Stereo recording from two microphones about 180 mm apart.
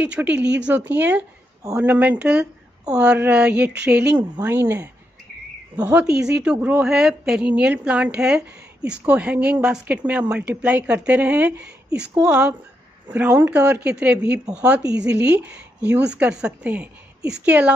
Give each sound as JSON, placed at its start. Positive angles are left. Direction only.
{"t": 0.0, "sound": "a woman's voice", "side_deg": -5}
{"t": 5.9, "sound": "a woman's voice", "side_deg": -5}
{"t": 14.9, "sound": "speech", "side_deg": -70}
{"t": 15.2, "sound": "a woman's voice", "side_deg": -10}